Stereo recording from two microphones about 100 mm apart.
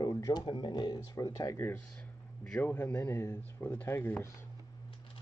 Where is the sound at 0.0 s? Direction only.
40° left (ahead or behind).